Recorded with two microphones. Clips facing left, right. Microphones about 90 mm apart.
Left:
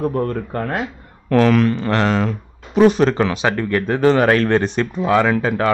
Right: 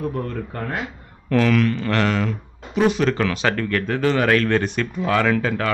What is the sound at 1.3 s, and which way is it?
Speech, 35° left (ahead or behind).